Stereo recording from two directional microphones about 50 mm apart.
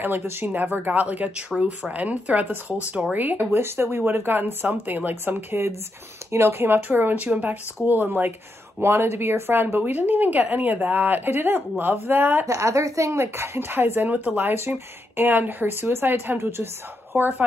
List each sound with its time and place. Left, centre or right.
0.0 s speech: right
0.8 s speech: right
3.5 s speech: right
4.6 s speech: right
5.3 s speech: right
8.8 s speech: right
9.8 s speech: right
12.4 s speech: right
14.0 s speech: right
14.5 s speech: right
17.1 s speech: right